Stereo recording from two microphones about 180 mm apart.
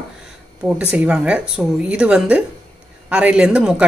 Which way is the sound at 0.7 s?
5° right (ahead or behind).